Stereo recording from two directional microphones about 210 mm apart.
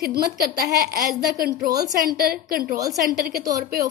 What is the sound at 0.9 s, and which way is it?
A woman's voice, 45° right (ahead or behind).